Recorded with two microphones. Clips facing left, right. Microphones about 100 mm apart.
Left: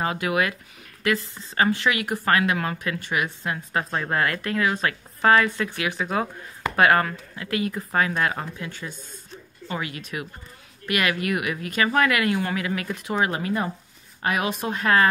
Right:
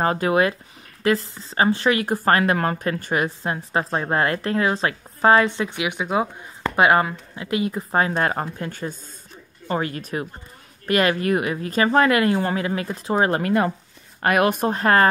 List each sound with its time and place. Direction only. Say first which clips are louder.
0.0 s speech: right 5 dB; 40° right (ahead or behind)
13.4 s speech: right 6 dB; 65° right (ahead or behind)
14.7 s speech: left 1 dB; 40° right (ahead or behind)